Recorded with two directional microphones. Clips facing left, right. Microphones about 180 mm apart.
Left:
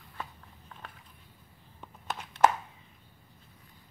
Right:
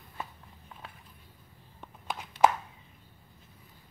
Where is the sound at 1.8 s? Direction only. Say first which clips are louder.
Even; 10° right (ahead or behind).